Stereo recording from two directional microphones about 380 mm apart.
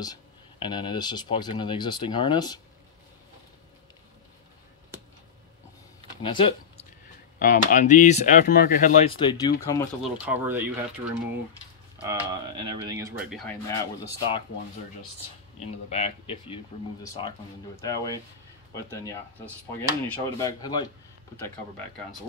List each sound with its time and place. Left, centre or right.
0.0 s speech: centre
6.2 s speech: centre
10.2 s speech: centre
15.6 s speech: centre